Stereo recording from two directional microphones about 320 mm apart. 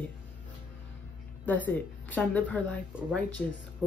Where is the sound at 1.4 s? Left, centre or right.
Centre.